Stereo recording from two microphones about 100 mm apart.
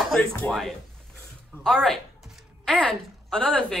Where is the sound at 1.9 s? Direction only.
5° left (ahead or behind).